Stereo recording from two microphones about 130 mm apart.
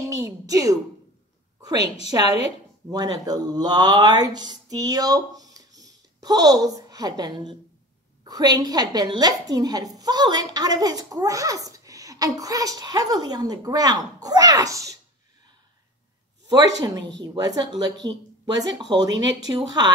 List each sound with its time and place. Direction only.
0.2 s a woman's voice: 25° right (ahead or behind)
16.4 s a woman's voice: 30° right (ahead or behind)